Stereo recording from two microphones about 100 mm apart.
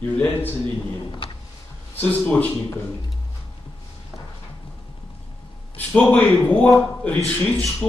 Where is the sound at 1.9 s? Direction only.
20° left (ahead or behind).